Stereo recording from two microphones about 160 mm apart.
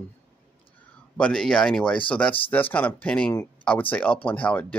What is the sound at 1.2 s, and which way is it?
Speech, 5° left (ahead or behind).